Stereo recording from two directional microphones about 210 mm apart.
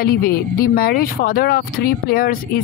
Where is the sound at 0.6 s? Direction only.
45° left (ahead or behind).